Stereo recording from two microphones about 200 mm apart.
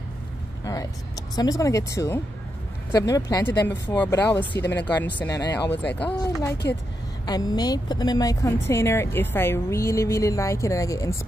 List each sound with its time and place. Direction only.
1.3 s a woman's voice: 20° left (ahead or behind)
7.2 s a woman's voice: 20° left (ahead or behind)